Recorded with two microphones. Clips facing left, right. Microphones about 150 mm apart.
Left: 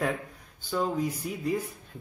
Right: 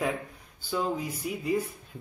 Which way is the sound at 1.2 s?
5° right (ahead or behind).